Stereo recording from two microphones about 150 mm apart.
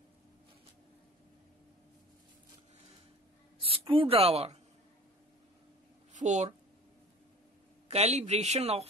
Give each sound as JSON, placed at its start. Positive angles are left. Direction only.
{"t": 3.6, "sound": "speech", "side_deg": -35}
{"t": 6.1, "sound": "speech", "side_deg": -50}
{"t": 7.9, "sound": "speech", "side_deg": -45}